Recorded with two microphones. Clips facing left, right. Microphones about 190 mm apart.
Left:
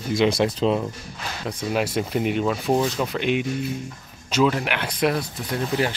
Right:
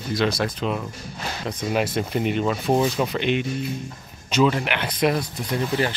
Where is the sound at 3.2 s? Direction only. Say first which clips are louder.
Even; 5° left (ahead or behind).